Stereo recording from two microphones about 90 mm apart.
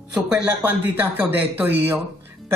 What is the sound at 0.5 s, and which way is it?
Speech, 20° right (ahead or behind).